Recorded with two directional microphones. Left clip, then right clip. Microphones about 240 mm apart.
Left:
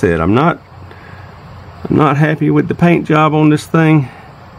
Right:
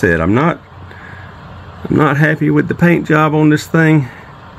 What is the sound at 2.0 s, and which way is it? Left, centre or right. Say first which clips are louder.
Speech: even; centre.